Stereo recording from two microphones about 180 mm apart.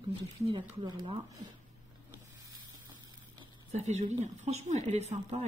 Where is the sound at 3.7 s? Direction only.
40° right (ahead or behind).